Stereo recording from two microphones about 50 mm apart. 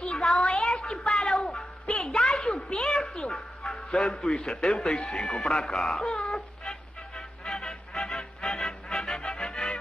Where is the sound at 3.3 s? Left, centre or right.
Centre.